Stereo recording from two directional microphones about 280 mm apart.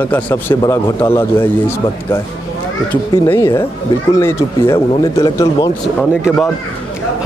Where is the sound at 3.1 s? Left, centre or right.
Centre.